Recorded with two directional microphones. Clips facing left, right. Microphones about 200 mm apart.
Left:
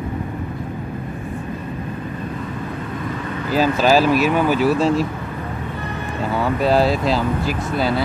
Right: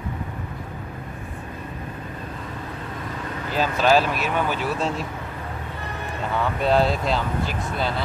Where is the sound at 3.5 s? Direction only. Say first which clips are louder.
Left 4 dB; 5° left (ahead or behind).